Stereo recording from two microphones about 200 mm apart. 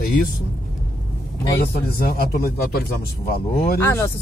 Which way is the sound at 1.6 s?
50° left (ahead or behind).